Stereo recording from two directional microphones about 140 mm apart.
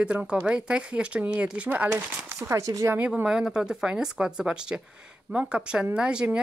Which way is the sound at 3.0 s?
10° right (ahead or behind).